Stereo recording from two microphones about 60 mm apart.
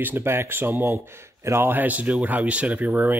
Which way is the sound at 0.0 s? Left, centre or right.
Right.